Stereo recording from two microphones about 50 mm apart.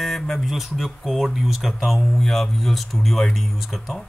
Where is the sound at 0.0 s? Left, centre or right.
Centre.